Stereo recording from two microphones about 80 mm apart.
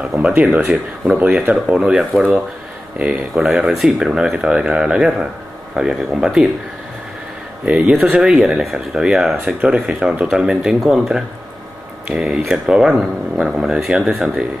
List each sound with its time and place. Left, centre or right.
0.0 s speech: centre
7.7 s speech: centre